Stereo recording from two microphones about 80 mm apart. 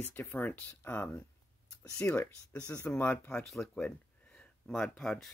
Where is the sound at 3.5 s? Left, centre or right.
Centre.